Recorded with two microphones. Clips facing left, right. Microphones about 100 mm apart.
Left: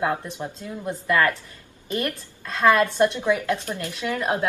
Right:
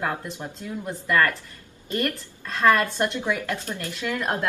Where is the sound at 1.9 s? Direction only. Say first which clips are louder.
Even; 15° left (ahead or behind).